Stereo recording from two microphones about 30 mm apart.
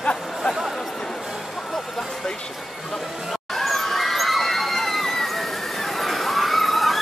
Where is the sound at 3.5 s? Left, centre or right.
Centre.